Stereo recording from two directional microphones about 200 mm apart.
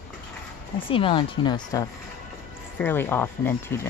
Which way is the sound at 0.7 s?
25° left (ahead or behind).